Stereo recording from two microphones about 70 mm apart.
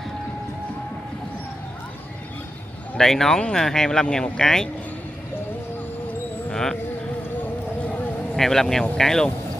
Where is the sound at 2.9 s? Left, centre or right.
Centre.